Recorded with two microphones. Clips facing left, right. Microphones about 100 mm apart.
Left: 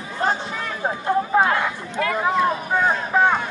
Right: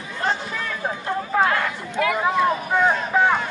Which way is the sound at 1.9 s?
5° right (ahead or behind).